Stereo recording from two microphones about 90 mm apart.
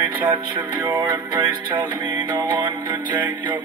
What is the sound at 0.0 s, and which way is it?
Music, 65° right (ahead or behind).